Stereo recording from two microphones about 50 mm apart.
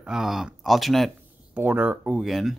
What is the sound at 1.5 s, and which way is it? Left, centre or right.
Speech, right.